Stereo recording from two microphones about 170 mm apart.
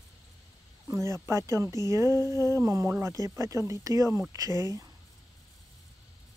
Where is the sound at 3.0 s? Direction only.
20° right (ahead or behind).